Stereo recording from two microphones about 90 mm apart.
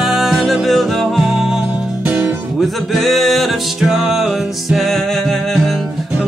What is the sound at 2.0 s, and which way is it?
Music, 25° right (ahead or behind).